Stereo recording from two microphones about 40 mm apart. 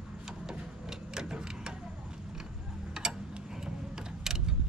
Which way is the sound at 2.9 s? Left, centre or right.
Centre.